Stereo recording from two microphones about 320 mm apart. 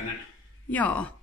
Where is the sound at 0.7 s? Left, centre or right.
Centre.